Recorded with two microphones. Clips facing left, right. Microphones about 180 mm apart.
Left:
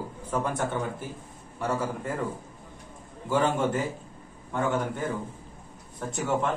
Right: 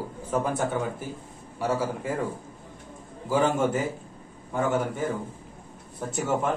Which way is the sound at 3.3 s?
5° right (ahead or behind).